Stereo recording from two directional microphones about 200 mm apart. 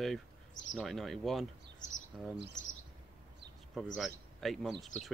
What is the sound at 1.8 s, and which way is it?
Speech, 40° left (ahead or behind).